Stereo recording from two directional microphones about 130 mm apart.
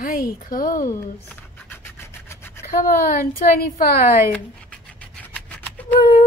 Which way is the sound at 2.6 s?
90° left.